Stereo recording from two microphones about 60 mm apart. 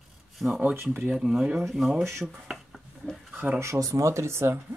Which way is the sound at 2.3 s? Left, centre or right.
Centre.